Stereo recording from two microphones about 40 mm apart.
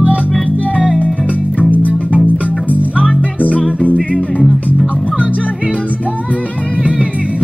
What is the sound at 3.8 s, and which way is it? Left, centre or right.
Music, left.